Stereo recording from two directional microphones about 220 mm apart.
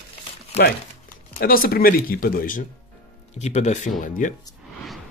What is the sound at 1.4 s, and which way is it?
Speech, 40° left (ahead or behind).